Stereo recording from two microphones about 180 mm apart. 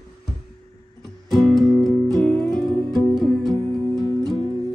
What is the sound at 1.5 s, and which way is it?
Music, centre (ahead or behind).